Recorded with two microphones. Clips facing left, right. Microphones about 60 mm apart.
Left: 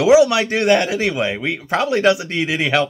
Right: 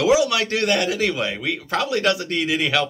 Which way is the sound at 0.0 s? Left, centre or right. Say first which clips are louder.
Left 6 dB; left.